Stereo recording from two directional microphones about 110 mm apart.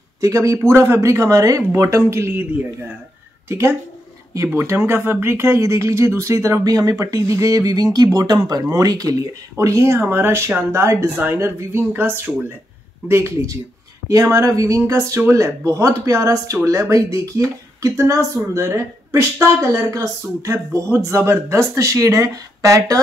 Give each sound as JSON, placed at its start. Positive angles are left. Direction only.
{"t": 0.2, "sound": "speech", "side_deg": -30}